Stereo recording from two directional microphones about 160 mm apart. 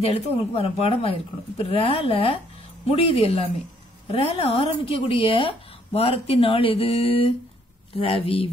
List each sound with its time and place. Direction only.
0.0 s a woman's voice: 40° left (ahead or behind)